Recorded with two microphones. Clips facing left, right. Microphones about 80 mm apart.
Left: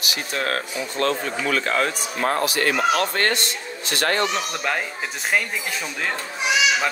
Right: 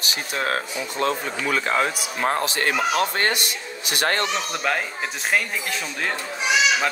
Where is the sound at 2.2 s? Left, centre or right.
Right.